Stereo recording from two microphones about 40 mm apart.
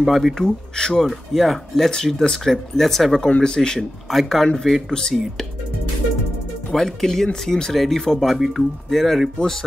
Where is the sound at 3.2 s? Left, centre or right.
Left.